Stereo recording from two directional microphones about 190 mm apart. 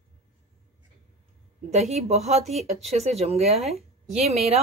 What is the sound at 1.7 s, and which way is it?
Speech, 35° right (ahead or behind).